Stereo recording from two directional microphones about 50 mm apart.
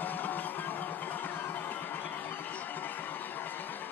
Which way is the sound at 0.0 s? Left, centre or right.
Left.